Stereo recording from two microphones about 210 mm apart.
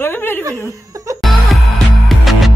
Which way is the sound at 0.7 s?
15° right (ahead or behind).